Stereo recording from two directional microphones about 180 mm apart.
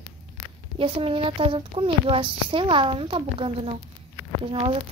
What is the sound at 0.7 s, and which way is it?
Speech, 30° right (ahead or behind).